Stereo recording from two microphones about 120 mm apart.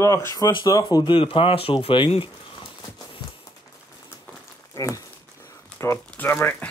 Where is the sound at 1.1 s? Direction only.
50° left (ahead or behind).